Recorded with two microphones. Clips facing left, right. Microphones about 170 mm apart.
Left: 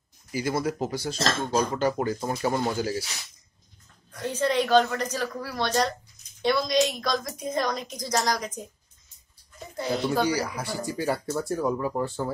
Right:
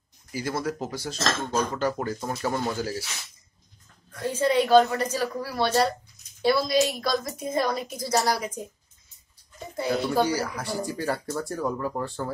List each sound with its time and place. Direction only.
0.3 s speech: 5° left (ahead or behind)
1.1 s speech: 30° left (ahead or behind)
1.6 s speech: 5° left (ahead or behind)
4.2 s a woman's voice: 10° right (ahead or behind)
10.1 s speech: 5° right (ahead or behind)